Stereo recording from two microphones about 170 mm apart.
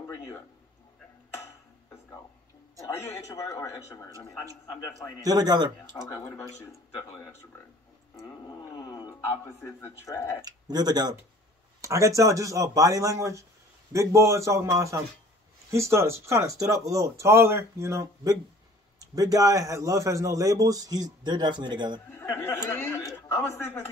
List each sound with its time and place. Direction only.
3.4 s speech: 20° left (ahead or behind)
5.2 s a man's voice: 20° right (ahead or behind)
6.1 s speech: 15° left (ahead or behind)
8.7 s a sound: 25° left (ahead or behind)
9.6 s speech: 15° left (ahead or behind)
10.4 s a man's voice: 25° right (ahead or behind)
22.1 s a woman's voice: 10° left (ahead or behind)